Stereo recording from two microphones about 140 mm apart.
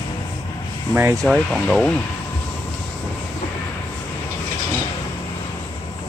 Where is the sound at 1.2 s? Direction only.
Centre (ahead or behind).